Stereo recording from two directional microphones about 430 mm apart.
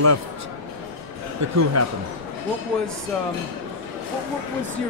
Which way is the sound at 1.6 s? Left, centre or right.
Right.